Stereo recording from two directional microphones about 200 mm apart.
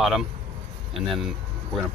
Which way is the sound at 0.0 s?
Centre (ahead or behind).